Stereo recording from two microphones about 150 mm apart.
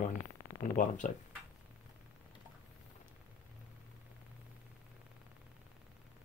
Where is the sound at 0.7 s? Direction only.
60° left (ahead or behind).